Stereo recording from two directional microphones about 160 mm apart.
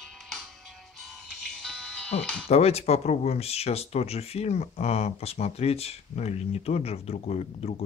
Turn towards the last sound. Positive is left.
turn(degrees=40)  # may be behind; listen again after turning